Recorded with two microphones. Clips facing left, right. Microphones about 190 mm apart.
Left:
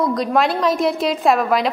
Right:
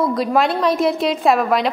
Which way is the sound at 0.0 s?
5° right (ahead or behind).